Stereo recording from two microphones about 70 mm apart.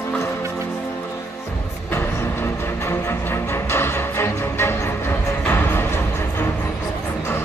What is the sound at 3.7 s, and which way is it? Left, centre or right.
Music, left.